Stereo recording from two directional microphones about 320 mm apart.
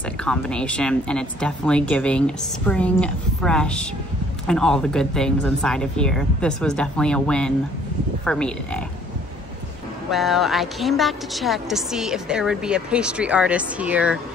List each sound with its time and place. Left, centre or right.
0.2 s a woman's voice: centre
10.1 s a woman's voice: centre